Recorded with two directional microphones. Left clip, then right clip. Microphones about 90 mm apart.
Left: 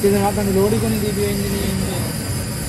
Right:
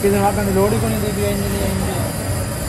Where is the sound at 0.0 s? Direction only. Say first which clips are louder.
Right 1 dB; 15° left (ahead or behind).